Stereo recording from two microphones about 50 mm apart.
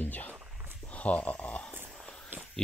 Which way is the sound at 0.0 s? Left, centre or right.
Left.